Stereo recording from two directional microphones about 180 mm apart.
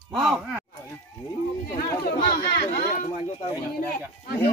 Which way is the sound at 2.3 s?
55° left (ahead or behind).